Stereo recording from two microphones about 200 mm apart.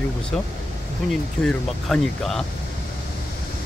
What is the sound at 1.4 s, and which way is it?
Speech, 5° left (ahead or behind).